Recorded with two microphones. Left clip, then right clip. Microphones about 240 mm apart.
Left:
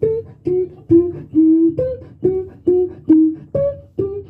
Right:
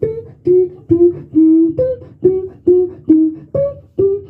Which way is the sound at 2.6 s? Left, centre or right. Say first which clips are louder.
Right 4 dB; right.